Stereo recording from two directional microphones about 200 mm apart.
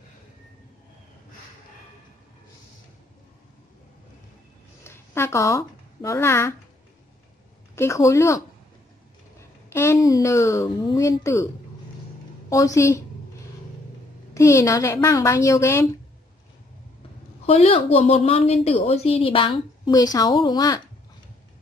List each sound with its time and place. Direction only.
4.8 s speech: 10° left (ahead or behind)
7.7 s a woman's voice: 15° left (ahead or behind)
9.7 s speech: 15° left (ahead or behind)
12.4 s a woman's voice: 15° left (ahead or behind)
14.3 s a woman's voice: 15° left (ahead or behind)
17.5 s a woman's voice: 30° left (ahead or behind)